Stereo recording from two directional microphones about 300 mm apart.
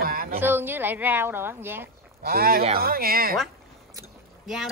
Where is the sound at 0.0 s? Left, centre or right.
Right.